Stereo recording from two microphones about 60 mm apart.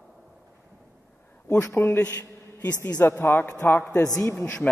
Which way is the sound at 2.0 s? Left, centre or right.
Left.